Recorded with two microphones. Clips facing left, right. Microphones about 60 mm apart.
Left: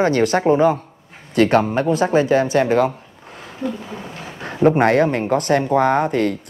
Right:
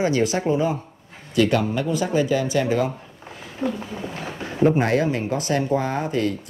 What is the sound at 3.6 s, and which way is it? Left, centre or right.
Speech, right.